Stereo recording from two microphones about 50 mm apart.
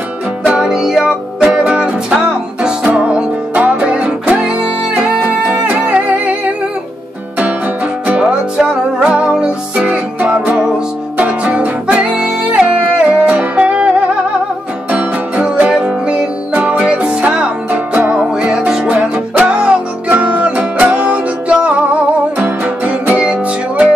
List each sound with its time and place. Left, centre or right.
0.5 s music: centre
1.5 s music: right
5.2 s music: right
7.3 s music: right
12.0 s music: centre
14.9 s music: right
17.6 s music: right
18.1 s music: centre